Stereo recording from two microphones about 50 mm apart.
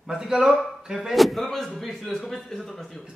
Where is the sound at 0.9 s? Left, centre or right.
Centre.